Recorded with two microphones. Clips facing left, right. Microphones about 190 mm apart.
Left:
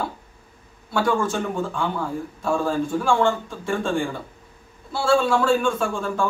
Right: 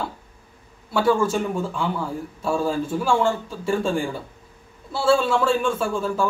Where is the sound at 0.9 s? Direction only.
5° right (ahead or behind).